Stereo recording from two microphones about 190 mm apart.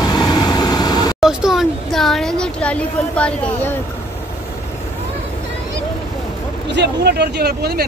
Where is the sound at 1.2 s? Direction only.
Centre (ahead or behind).